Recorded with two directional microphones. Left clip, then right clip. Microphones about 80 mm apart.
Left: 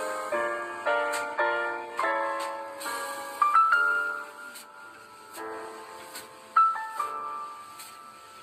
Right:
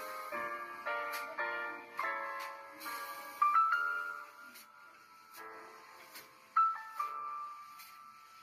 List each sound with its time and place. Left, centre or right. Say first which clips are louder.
0.0 s music: left 11 dB; left
5.4 s music: left 13 dB; left